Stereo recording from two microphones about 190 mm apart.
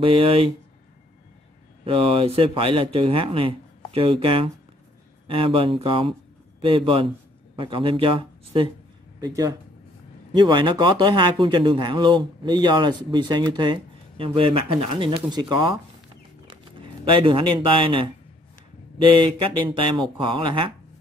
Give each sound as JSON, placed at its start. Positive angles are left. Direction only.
{"t": 0.0, "sound": "speech", "side_deg": -25}
{"t": 1.9, "sound": "speech", "side_deg": -30}
{"t": 17.0, "sound": "speech", "side_deg": -25}
{"t": 19.0, "sound": "speech", "side_deg": -25}